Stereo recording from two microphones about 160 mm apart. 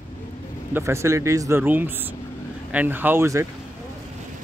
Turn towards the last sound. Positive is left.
turn(degrees=-15)  # may be behind; listen again after turning